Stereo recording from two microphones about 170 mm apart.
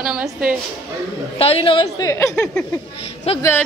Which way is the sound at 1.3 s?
35° left (ahead or behind).